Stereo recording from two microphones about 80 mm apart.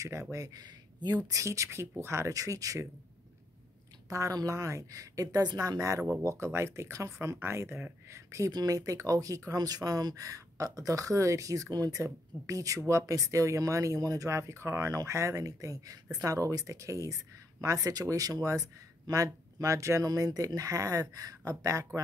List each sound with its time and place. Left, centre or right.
0.0 s speech: right
1.2 s speech: right
4.1 s speech: right
8.5 s speech: right